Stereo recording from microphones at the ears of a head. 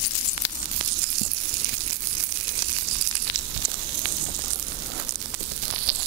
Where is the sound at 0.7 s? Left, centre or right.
Right.